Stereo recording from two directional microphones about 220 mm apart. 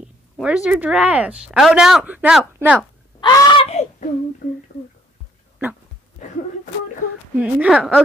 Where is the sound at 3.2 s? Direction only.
20° left (ahead or behind).